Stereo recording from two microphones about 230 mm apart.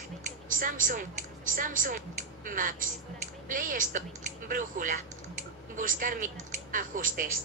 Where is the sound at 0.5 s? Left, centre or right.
Right.